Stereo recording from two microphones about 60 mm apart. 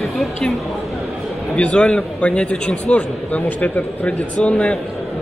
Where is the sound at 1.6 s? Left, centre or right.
Centre.